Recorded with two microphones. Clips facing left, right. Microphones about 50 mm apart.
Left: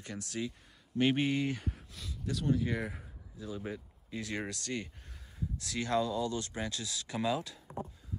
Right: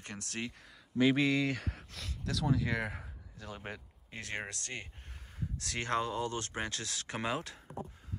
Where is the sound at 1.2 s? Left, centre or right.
Right.